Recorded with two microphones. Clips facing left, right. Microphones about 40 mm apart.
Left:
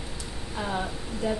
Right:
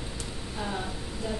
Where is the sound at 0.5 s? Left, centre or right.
Left.